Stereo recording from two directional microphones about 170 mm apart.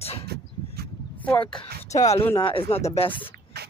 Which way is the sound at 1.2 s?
5° left (ahead or behind).